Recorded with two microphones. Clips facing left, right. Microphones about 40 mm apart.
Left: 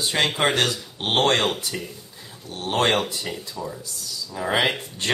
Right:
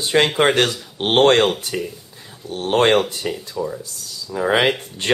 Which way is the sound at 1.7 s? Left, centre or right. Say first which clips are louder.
Right 7 dB; right.